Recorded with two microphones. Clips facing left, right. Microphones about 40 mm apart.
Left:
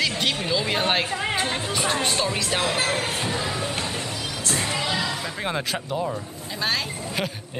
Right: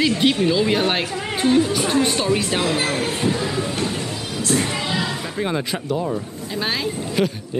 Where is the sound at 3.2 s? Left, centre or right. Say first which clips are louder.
Right 5 dB; left.